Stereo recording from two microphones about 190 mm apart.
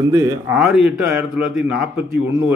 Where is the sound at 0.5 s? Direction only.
5° right (ahead or behind).